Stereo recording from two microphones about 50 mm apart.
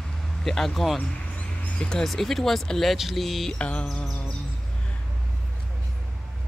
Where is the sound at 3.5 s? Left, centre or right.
Left.